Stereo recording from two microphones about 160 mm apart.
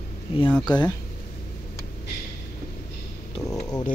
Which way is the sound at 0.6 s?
25° left (ahead or behind).